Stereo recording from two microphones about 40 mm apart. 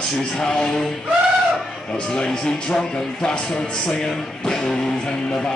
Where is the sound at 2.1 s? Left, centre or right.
Centre.